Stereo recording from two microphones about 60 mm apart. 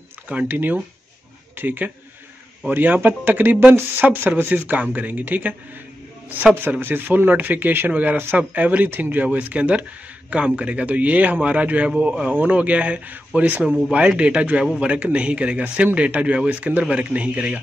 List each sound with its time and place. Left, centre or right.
0.5 s speech: right
6.8 s speech: right
12.0 s speech: centre
12.3 s speech: right